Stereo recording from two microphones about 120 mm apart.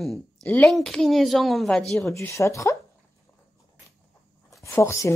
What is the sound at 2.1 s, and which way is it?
Speech, 25° left (ahead or behind).